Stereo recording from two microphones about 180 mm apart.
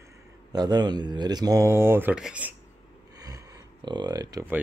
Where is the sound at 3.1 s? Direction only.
20° right (ahead or behind).